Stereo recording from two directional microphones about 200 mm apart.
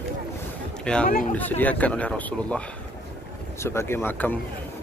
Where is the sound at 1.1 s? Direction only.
45° left (ahead or behind).